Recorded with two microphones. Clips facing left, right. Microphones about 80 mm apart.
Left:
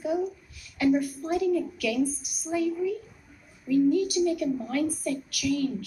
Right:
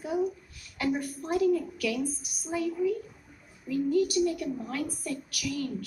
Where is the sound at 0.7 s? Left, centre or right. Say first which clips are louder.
Left 6 dB; right.